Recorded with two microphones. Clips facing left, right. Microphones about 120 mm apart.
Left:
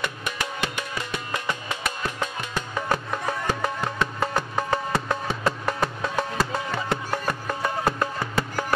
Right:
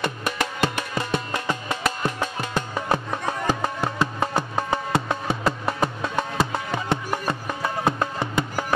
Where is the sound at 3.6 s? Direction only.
25° right (ahead or behind).